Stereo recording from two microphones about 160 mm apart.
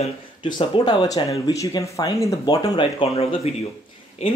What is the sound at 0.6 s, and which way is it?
Speech, 30° left (ahead or behind).